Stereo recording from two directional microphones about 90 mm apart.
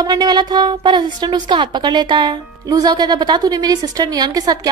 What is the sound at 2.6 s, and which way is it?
A woman's voice, 45° right (ahead or behind).